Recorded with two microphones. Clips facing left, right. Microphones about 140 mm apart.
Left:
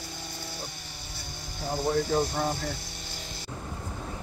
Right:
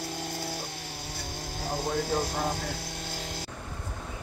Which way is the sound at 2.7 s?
70° right (ahead or behind).